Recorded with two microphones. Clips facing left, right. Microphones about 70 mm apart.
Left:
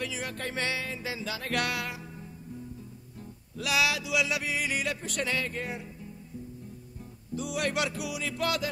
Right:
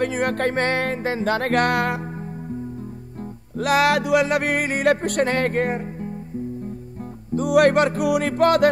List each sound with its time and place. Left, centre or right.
0.0 s music: right
3.5 s music: right
7.3 s music: right